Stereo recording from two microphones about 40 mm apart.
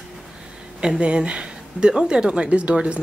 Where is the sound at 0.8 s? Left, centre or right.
Right.